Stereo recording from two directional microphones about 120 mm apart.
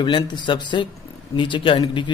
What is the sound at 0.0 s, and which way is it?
Speech, 40° left (ahead or behind).